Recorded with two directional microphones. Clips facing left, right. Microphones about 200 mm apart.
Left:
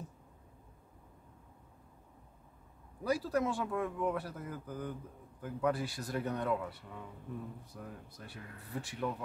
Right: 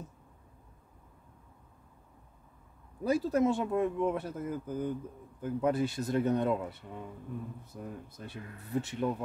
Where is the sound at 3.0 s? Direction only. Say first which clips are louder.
Right 5 dB; 20° right (ahead or behind).